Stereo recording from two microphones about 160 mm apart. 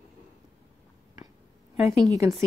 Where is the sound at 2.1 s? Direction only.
15° right (ahead or behind).